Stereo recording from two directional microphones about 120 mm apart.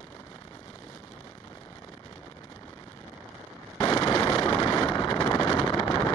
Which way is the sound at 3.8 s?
35° left (ahead or behind).